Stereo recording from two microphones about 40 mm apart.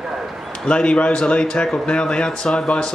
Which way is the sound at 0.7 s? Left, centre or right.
Left.